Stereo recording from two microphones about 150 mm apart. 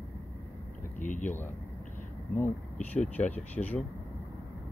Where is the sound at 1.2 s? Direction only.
15° left (ahead or behind).